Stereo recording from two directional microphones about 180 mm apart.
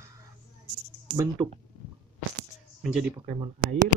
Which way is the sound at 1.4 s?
25° right (ahead or behind).